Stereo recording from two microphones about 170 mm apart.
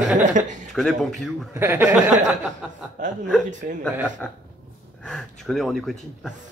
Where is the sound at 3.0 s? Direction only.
50° right (ahead or behind).